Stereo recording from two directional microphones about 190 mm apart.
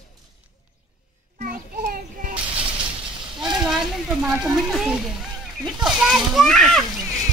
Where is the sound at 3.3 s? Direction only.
Centre (ahead or behind).